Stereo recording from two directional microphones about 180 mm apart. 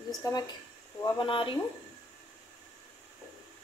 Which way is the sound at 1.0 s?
25° left (ahead or behind).